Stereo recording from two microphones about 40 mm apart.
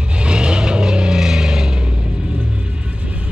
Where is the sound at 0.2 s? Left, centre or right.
Right.